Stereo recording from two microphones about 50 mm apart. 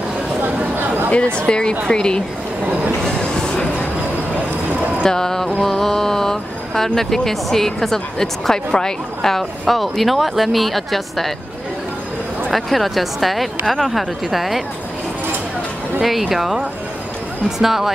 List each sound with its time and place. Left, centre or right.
1.4 s speech: centre
3.0 s train: centre
5.0 s speech: centre
12.4 s speech: centre
16.0 s speech: centre